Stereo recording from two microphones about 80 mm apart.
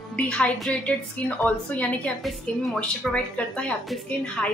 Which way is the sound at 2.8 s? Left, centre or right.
Centre.